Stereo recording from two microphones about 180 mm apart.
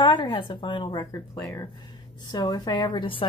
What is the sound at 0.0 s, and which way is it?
A woman's voice, 25° left (ahead or behind).